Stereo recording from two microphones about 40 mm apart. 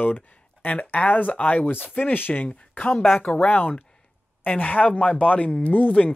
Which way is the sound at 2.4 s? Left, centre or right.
Left.